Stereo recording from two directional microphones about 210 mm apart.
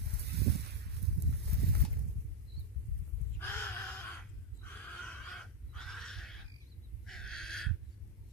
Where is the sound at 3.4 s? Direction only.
10° left (ahead or behind).